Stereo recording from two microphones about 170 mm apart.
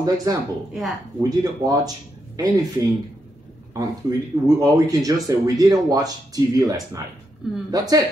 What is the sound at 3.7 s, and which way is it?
Speech, 20° right (ahead or behind).